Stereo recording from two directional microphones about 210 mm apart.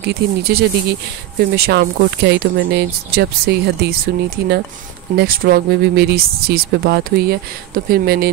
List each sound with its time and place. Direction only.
0.0 s speech: 45° right (ahead or behind)